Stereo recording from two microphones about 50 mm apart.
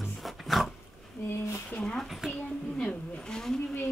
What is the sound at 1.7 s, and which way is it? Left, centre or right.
Speech, left.